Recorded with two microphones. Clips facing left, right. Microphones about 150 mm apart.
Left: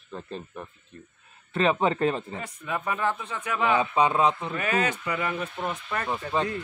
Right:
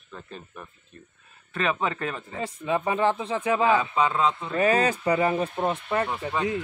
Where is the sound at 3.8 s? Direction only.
20° left (ahead or behind).